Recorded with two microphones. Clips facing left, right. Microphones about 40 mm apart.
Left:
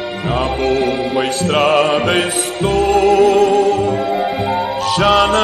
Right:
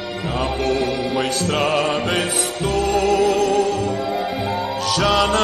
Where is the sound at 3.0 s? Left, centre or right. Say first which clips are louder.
Left 7 dB; centre.